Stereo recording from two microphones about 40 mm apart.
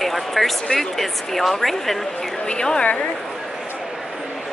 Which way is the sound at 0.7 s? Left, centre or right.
Centre.